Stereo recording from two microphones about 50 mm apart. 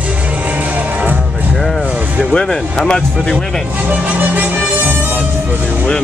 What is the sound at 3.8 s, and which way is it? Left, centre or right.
Music, right.